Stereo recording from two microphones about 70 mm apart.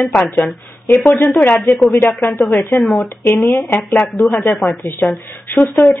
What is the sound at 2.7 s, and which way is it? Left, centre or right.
Speech, centre.